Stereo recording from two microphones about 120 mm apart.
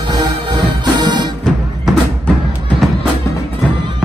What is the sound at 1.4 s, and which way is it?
Music, 5° left (ahead or behind).